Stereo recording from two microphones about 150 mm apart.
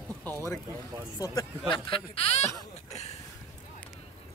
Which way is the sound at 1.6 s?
35° left (ahead or behind).